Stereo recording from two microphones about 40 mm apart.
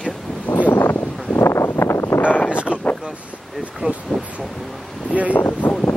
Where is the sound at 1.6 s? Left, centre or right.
Left.